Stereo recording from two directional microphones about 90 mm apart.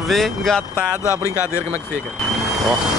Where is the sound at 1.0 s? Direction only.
35° left (ahead or behind).